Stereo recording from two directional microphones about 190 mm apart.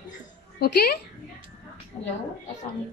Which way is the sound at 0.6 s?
55° left (ahead or behind).